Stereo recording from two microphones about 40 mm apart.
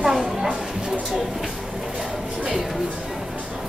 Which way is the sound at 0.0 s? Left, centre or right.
Centre.